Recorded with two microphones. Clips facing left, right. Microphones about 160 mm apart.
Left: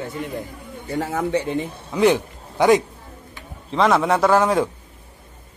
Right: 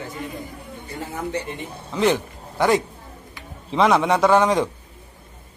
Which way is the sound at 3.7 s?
Centre (ahead or behind).